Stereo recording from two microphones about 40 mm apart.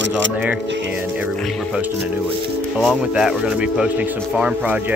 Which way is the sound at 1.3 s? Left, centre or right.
Centre.